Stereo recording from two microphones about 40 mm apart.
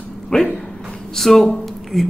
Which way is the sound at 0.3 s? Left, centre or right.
Centre.